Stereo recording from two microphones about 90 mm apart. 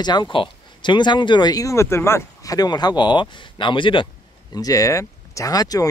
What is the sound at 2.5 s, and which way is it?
Speech, 50° left (ahead or behind).